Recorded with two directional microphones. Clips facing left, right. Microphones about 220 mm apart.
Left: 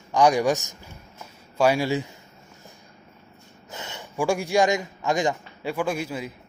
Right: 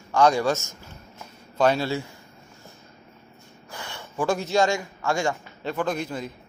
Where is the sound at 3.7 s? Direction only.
20° left (ahead or behind).